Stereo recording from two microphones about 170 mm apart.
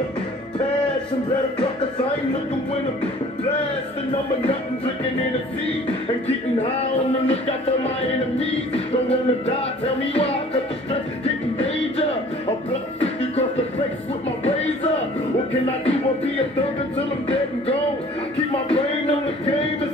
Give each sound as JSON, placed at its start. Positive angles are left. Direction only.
{"t": 6.6, "sound": "music", "side_deg": 35}
{"t": 18.7, "sound": "music", "side_deg": 35}